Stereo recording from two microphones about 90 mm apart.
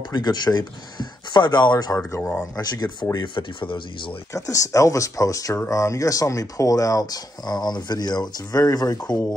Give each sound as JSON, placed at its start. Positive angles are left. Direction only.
{"t": 0.1, "sound": "speech", "side_deg": 50}
{"t": 4.3, "sound": "speech", "side_deg": 35}